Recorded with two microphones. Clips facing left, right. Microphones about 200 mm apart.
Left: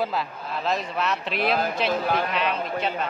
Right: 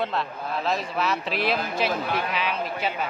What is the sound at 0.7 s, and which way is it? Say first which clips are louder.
Speech: left 1 dB; centre (ahead or behind).